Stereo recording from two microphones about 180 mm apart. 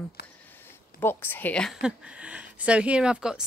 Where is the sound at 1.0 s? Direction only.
10° left (ahead or behind).